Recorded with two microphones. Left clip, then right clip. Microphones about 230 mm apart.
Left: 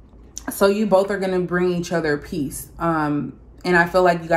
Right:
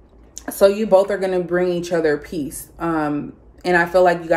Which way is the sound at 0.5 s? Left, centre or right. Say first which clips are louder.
Right 3 dB; left.